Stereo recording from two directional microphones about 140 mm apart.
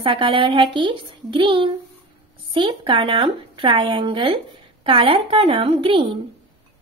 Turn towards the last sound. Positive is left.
turn(degrees=-40)  # may be behind; listen again after turning